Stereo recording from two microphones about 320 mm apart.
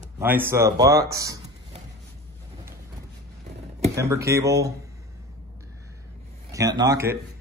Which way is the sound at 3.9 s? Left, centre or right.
Centre.